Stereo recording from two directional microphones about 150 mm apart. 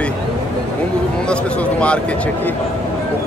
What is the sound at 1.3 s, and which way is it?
A man's voice, 10° left (ahead or behind).